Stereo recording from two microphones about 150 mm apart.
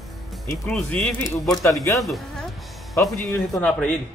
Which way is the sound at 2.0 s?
Centre (ahead or behind).